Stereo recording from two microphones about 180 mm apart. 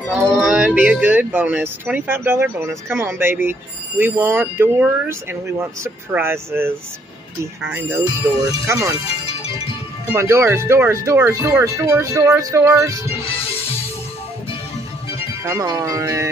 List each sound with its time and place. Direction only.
0.1 s speech: 5° right (ahead or behind)
10.1 s speech: 15° right (ahead or behind)
15.4 s speech: 20° right (ahead or behind)